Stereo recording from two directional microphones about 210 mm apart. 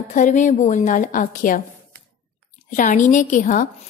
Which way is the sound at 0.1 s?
35° left (ahead or behind).